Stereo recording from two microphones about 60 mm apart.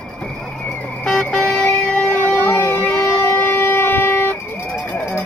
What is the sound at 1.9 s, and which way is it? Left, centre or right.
Wind instrument, left.